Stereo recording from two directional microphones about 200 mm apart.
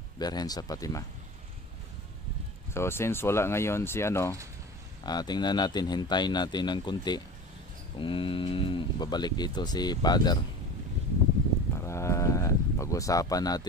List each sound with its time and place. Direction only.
0.2 s cattle: 20° left (ahead or behind)
2.7 s speech: 15° left (ahead or behind)
5.0 s cattle: 20° left (ahead or behind)
11.8 s a sound: 15° left (ahead or behind)